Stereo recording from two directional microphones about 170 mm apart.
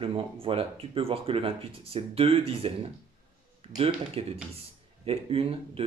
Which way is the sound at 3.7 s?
35° right (ahead or behind).